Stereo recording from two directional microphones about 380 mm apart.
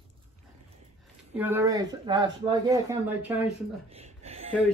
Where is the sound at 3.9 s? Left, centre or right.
Centre.